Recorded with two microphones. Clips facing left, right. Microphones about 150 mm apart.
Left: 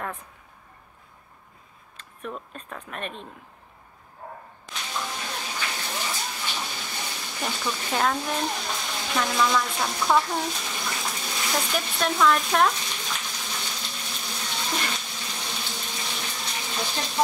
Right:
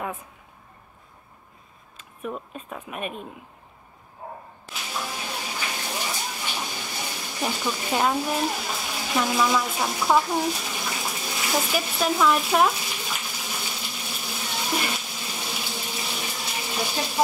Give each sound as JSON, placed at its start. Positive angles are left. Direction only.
{"t": 2.0, "sound": "speech", "side_deg": -5}
{"t": 4.6, "sound": "whip", "side_deg": -5}
{"t": 7.0, "sound": "a sound", "side_deg": -10}